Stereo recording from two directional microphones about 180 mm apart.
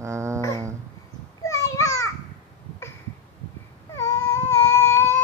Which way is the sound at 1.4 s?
15° left (ahead or behind).